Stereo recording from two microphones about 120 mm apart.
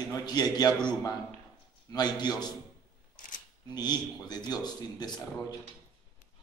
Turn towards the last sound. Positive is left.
turn(degrees=35)  # may be behind; listen again after turning